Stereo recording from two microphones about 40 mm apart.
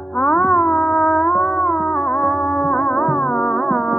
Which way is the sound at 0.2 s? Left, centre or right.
Centre.